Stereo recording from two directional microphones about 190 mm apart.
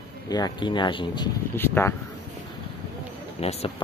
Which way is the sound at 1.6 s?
10° left (ahead or behind).